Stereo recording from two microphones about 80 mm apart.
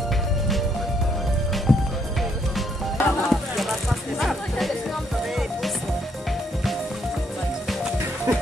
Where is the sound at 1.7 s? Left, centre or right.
Centre.